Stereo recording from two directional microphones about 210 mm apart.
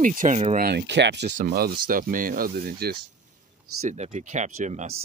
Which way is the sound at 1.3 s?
45° right (ahead or behind).